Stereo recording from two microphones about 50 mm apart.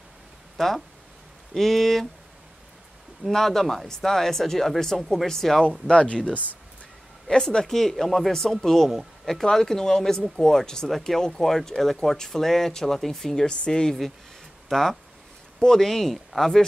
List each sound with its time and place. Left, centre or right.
0.6 s speech: centre
3.3 s speech: centre
5.9 s speech: left
7.2 s speech: centre